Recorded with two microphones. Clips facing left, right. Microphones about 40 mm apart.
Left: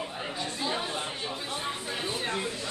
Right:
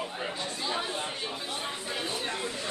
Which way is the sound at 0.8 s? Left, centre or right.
Centre.